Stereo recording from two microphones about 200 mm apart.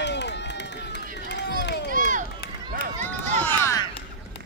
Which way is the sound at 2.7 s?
40° right (ahead or behind).